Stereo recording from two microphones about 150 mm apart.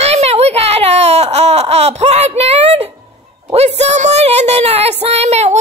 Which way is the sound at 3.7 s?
50° right (ahead or behind).